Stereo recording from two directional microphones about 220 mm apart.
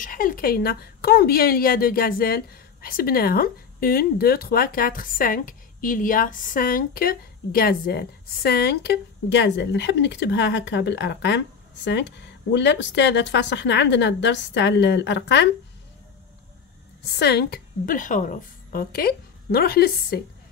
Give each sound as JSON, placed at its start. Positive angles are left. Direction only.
{"t": 0.0, "sound": "a woman's voice", "side_deg": 40}
{"t": 17.2, "sound": "a woman's voice", "side_deg": 45}